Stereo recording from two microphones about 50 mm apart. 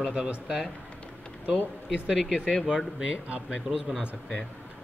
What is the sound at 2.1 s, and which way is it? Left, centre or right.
Speech, centre.